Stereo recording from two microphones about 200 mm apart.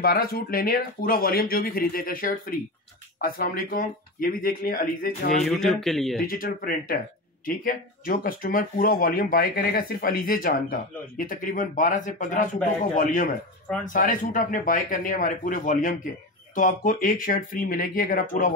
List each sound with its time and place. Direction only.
0.0 s speech: 50° left (ahead or behind)
5.3 s speech: centre (ahead or behind)
6.2 s speech: 45° left (ahead or behind)